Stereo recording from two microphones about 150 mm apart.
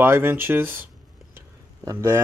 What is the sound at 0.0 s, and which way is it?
Speech, 15° right (ahead or behind).